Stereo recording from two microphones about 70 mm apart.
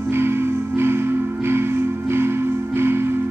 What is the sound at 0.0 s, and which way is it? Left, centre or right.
Music, right.